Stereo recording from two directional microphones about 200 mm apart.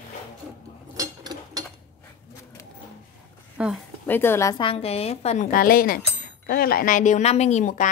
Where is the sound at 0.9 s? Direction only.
20° right (ahead or behind).